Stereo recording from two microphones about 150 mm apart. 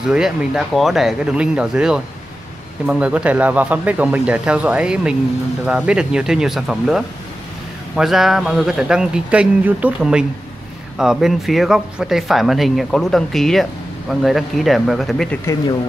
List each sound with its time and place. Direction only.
0.0 s speech: 5° right (ahead or behind)
15.5 s speech: 20° left (ahead or behind)